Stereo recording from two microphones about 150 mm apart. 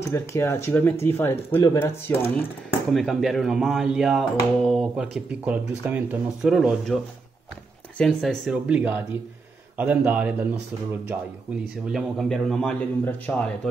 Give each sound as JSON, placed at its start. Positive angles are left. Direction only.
{"t": 0.1, "sound": "speech", "side_deg": 15}
{"t": 2.9, "sound": "speech", "side_deg": 0}
{"t": 8.0, "sound": "a man's voice", "side_deg": 0}
{"t": 11.9, "sound": "speech", "side_deg": 0}